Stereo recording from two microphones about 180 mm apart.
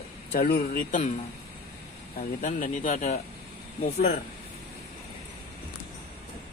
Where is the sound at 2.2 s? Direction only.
45° left (ahead or behind).